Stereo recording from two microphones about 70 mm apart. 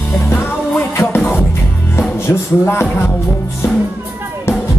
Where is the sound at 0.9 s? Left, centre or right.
Left.